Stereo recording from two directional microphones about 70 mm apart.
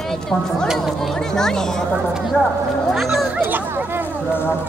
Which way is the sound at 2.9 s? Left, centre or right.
Centre.